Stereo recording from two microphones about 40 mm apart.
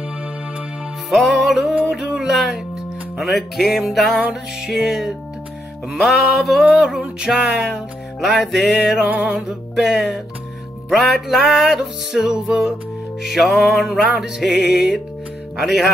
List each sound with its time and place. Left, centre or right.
1.1 s music: centre
4.2 s music: centre
6.0 s music: centre
13.2 s music: centre
15.5 s speech: centre